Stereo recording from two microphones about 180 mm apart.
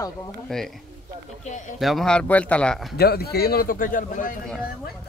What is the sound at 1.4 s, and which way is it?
Speech, 40° left (ahead or behind).